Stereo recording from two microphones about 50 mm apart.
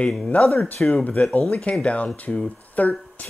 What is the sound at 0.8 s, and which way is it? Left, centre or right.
Speech, centre.